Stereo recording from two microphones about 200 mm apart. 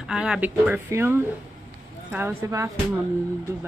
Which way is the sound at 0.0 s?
5° right (ahead or behind).